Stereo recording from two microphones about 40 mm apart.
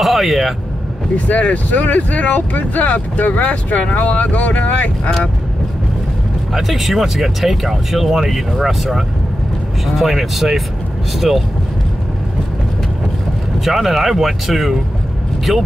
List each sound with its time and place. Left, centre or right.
0.0 s speech: centre
1.1 s speech: left
6.5 s speech: centre
9.9 s speech: centre
13.7 s speech: centre